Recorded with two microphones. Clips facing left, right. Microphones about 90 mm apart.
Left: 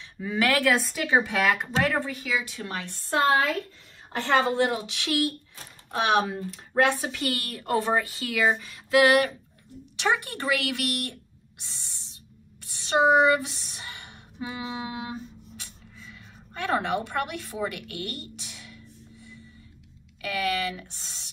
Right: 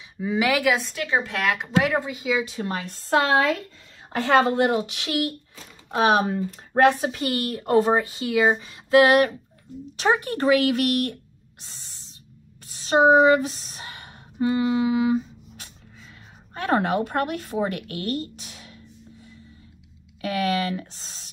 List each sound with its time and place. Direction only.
0.0 s speech: 15° right (ahead or behind); by 1.7 s centre (ahead or behind)
1.8 s a woman's voice: 10° right (ahead or behind)
3.1 s speech: 90° right
4.6 s speech: 40° right (ahead or behind)
6.2 s speech: 40° right (ahead or behind)
7.2 s speech: 25° right (ahead or behind); by 11.1 s 40° right (ahead or behind)
11.6 s owl: 45° right (ahead or behind)
12.7 s speech: 40° right (ahead or behind)
14.8 s guitar: 70° right (ahead or behind)
15.5 s speech: 45° right (ahead or behind)
20.2 s speech: 35° right (ahead or behind)